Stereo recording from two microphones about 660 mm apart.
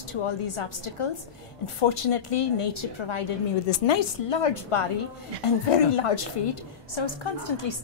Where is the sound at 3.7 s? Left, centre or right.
Left.